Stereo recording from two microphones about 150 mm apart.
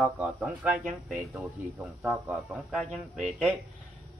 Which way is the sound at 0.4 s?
10° right (ahead or behind).